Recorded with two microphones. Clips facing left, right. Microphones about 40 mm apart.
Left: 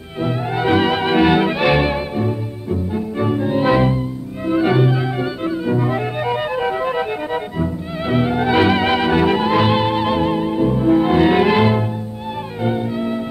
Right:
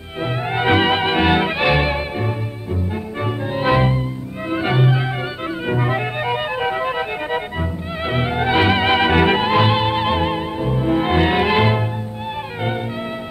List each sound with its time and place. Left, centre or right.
0.2 s music: right
5.7 s music: right
6.2 s music: right
9.0 s music: right
9.6 s music: centre
11.3 s music: centre
12.6 s music: right